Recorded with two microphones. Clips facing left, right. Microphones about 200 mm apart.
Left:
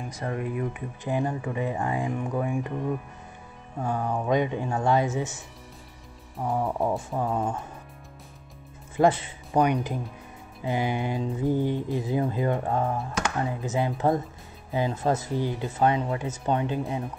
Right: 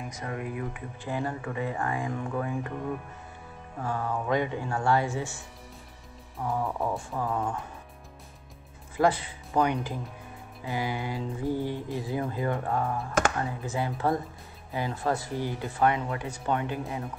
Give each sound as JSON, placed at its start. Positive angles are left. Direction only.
{"t": 0.1, "sound": "speech", "side_deg": 30}
{"t": 1.0, "sound": "speech", "side_deg": 15}
{"t": 3.8, "sound": "mantra", "side_deg": 15}
{"t": 6.4, "sound": "speech", "side_deg": 20}
{"t": 7.2, "sound": "mantra", "side_deg": 20}
{"t": 8.9, "sound": "speech", "side_deg": 20}
{"t": 10.6, "sound": "mantra", "side_deg": 20}